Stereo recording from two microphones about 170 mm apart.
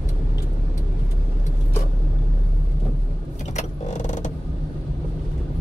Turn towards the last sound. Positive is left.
turn(degrees=45)  # may be behind; listen again after turning